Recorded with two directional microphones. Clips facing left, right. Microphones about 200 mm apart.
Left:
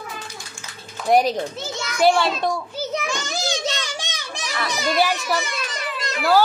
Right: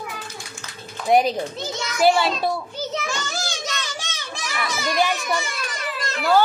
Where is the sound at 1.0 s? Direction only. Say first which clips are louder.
Even; centre (ahead or behind).